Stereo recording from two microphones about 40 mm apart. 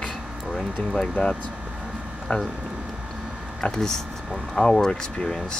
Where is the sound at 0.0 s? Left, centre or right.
Centre.